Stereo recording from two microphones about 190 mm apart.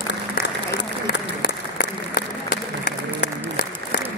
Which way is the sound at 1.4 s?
50° left (ahead or behind).